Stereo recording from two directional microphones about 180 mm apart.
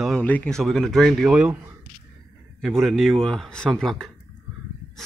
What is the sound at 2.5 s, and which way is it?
Speech, 5° right (ahead or behind).